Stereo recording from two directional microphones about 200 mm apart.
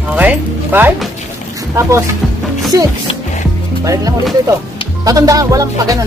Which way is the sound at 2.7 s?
20° right (ahead or behind).